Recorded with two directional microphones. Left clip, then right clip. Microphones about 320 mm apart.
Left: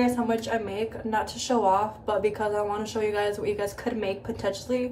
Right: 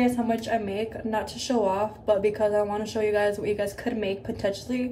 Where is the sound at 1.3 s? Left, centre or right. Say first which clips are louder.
Left 3 dB; centre.